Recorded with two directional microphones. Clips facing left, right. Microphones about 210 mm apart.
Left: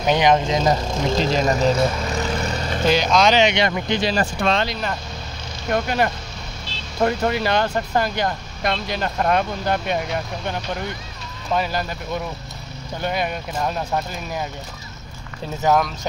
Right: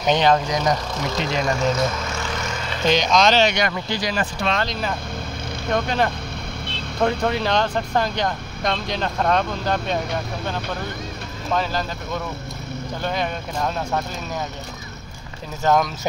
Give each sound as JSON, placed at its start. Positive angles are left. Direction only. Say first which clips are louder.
{"t": 0.0, "sound": "speech", "louder": "left 1 dB", "side_deg": 10}
{"t": 0.4, "sound": "speech", "louder": "left 2 dB", "side_deg": 25}
{"t": 2.2, "sound": "vehicle", "louder": "left 4 dB", "side_deg": 35}
{"t": 2.9, "sound": "speech", "louder": "even", "side_deg": 5}
{"t": 4.4, "sound": "speech", "louder": "left 3 dB", "side_deg": 50}
{"t": 5.7, "sound": "speech", "louder": "left 1 dB", "side_deg": 5}
{"t": 11.5, "sound": "speech", "louder": "left 1 dB", "side_deg": 10}
{"t": 13.0, "sound": "speech", "louder": "left 1 dB", "side_deg": 10}
{"t": 15.6, "sound": "speech", "louder": "even", "side_deg": 5}